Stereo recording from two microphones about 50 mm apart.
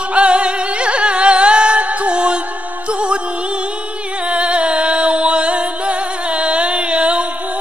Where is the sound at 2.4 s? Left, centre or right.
Right.